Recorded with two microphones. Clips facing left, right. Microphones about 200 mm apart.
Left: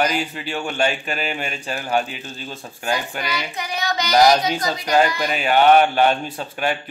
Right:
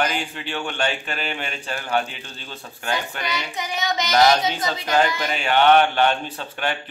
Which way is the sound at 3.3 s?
20° right (ahead or behind).